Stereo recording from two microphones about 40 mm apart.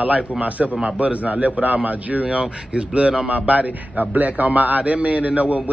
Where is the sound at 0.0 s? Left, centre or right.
Right.